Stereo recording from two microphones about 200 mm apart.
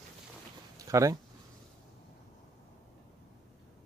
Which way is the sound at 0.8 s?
15° right (ahead or behind).